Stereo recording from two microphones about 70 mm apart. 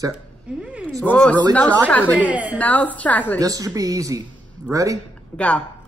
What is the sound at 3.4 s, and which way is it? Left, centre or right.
Speech, right.